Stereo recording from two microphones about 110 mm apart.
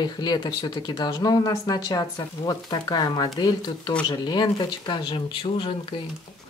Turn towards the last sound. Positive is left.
turn(degrees=50)  # may be behind; listen again after turning